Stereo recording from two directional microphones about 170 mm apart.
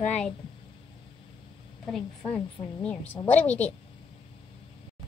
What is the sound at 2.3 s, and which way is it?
A woman's voice, 5° left (ahead or behind).